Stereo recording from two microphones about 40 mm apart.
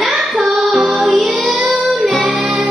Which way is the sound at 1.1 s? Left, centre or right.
Centre.